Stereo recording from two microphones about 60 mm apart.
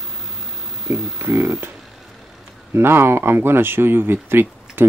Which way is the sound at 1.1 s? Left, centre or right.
Right.